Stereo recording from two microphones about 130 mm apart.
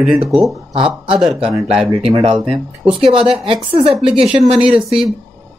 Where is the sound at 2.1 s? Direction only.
50° right (ahead or behind).